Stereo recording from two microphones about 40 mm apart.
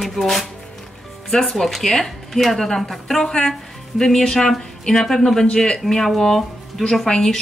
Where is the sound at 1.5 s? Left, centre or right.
Centre.